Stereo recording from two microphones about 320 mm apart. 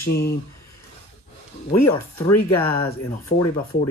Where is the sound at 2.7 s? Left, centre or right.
Left.